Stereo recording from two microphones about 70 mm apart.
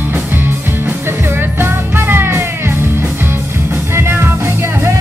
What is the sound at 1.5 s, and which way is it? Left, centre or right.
Music, right.